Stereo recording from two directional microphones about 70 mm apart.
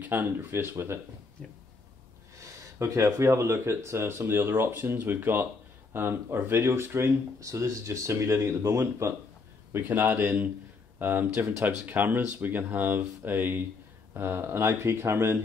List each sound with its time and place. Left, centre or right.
0.0 s speech: right
2.4 s speech: right
9.7 s speech: right
11.3 s speech: right
11.6 s speech: right